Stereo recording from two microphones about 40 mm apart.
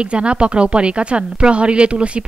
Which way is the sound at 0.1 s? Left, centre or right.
Right.